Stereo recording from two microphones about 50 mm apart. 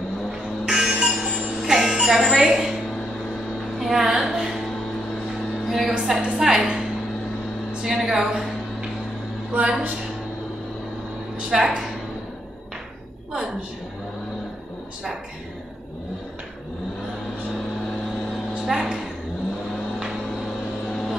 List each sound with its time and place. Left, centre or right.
0.7 s a sound: centre
1.2 s jingle bell: centre
3.8 s a sound: centre
4.2 s music: centre
5.7 s music: centre
6.2 s a woman's voice: centre
7.8 s a woman's voice: centre
9.5 s a woman's voice: right
11.3 s a woman's voice: centre
18.7 s a woman's voice: centre